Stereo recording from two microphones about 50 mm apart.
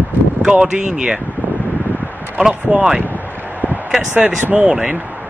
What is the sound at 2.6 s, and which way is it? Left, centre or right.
Speech, centre.